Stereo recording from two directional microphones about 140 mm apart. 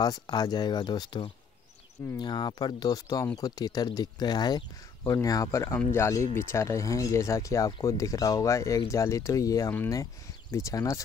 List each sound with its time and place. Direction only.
0.0 s speech: 30° left (ahead or behind)